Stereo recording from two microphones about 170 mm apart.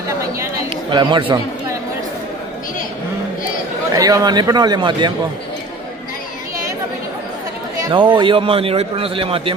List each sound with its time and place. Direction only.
0.4 s chatter: 25° right (ahead or behind)
3.9 s a man's voice: 20° right (ahead or behind)
7.8 s a man's voice: 30° right (ahead or behind)